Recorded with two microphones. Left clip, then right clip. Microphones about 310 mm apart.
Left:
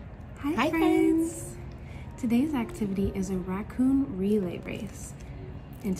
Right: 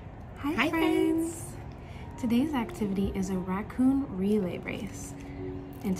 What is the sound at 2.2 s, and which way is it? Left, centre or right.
A woman's voice, centre.